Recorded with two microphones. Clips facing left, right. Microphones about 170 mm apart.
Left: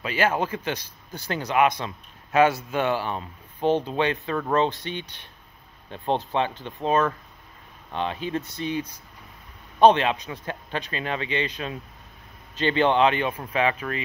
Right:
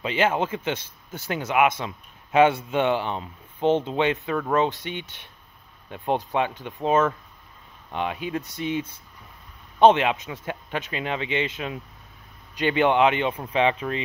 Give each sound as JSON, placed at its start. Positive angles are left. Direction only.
{"t": 0.0, "sound": "speech", "side_deg": -25}
{"t": 8.3, "sound": "speech", "side_deg": 0}
{"t": 8.5, "sound": "speech", "side_deg": -20}